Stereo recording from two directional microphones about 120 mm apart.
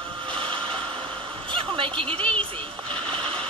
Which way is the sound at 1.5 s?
45° right (ahead or behind).